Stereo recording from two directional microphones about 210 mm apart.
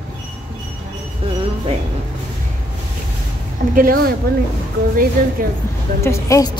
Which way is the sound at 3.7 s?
45° right (ahead or behind).